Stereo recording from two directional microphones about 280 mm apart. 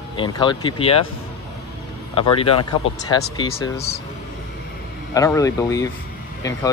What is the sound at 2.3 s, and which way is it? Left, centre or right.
Speech, centre.